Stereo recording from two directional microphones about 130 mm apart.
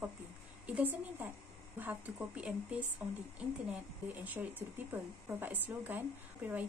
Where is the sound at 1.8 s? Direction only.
15° right (ahead or behind).